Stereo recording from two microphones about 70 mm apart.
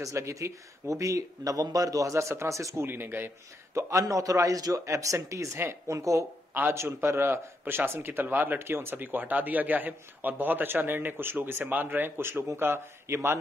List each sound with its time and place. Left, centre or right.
0.0 s speech: right
3.7 s speech: right
5.6 s a man's voice: right
5.9 s speech: right
6.5 s a man's voice: right